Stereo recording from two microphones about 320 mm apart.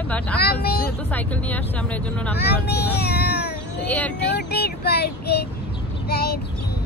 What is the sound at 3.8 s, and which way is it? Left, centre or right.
Speech, centre.